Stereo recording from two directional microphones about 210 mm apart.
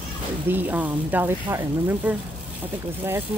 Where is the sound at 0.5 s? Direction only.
10° right (ahead or behind).